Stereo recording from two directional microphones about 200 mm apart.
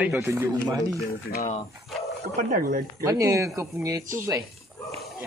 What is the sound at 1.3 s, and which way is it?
Speech, 40° left (ahead or behind).